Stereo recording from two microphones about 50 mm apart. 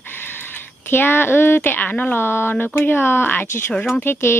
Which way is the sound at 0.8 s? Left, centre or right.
Left.